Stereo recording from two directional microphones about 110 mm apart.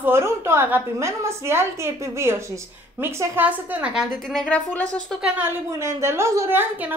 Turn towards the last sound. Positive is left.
turn(degrees=-20)  # may be behind; listen again after turning